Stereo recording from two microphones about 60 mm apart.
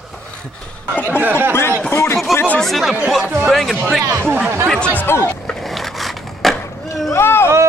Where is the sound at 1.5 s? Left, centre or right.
Left.